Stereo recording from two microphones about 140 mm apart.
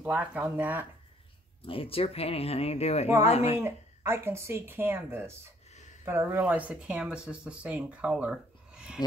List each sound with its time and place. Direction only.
0.0 s speech: 10° right (ahead or behind)
1.6 s speech: 40° left (ahead or behind)
3.5 s speech: 15° right (ahead or behind)